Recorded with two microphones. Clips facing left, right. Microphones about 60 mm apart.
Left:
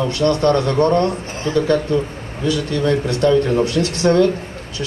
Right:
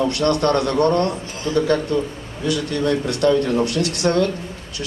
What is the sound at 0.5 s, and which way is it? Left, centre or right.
Speech, left.